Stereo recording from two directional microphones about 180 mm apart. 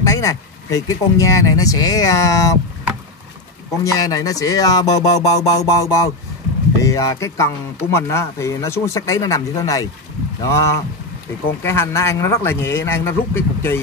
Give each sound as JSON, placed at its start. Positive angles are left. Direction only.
{"t": 0.0, "sound": "speech", "side_deg": 15}
{"t": 3.8, "sound": "speech", "side_deg": 20}